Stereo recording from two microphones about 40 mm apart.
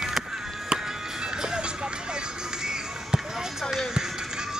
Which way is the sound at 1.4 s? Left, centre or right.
Centre.